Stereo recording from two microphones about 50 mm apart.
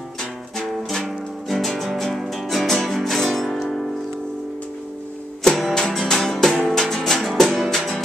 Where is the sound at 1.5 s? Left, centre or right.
Centre.